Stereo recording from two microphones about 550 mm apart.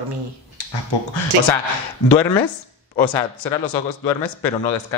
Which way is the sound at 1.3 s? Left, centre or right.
Right.